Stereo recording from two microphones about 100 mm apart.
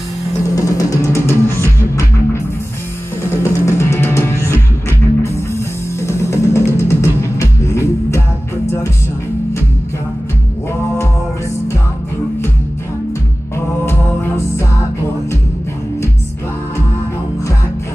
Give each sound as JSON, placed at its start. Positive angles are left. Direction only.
{"t": 0.6, "sound": "music", "side_deg": 35}
{"t": 5.9, "sound": "music", "side_deg": 30}
{"t": 13.8, "sound": "music", "side_deg": 25}